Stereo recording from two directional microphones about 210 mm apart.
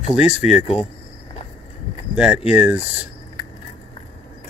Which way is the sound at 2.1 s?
5° right (ahead or behind).